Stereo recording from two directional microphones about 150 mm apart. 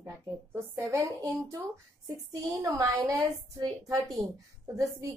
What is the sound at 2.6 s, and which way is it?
A woman's voice, 20° right (ahead or behind).